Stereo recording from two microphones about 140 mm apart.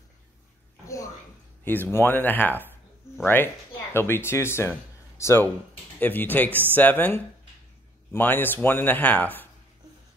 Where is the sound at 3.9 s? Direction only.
15° left (ahead or behind).